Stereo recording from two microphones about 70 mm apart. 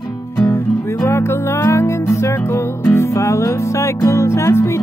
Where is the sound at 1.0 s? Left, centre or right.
Left.